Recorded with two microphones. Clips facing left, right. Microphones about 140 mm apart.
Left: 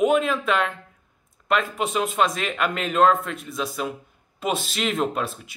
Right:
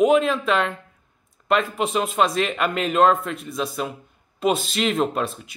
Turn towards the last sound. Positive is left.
turn(degrees=0)  # may be behind; listen again after turning